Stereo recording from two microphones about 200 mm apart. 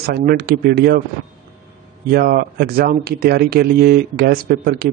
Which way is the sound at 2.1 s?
50° right (ahead or behind).